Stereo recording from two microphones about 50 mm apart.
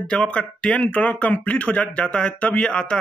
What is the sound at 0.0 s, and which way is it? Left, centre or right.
Speech, centre.